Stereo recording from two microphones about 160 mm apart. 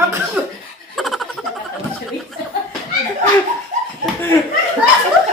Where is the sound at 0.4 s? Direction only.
10° right (ahead or behind).